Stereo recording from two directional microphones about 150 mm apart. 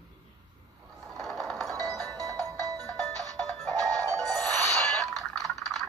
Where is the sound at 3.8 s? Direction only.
25° right (ahead or behind).